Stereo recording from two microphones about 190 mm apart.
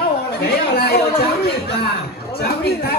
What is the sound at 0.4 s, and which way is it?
A man's voice, 55° left (ahead or behind).